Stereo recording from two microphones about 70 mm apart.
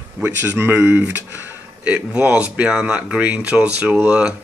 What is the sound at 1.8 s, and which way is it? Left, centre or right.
Speech, centre.